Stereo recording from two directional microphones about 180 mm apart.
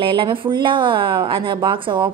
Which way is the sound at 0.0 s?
30° right (ahead or behind).